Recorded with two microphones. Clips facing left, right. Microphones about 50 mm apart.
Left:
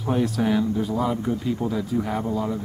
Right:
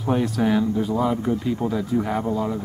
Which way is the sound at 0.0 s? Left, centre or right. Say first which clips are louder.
Right 1 dB; centre.